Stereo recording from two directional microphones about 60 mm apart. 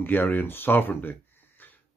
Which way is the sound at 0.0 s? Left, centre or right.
Left.